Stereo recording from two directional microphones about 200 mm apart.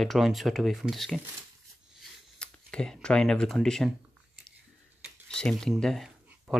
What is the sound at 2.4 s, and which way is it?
Speech, 5° left (ahead or behind).